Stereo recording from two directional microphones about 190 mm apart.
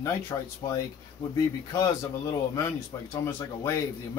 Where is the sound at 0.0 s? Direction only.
15° left (ahead or behind).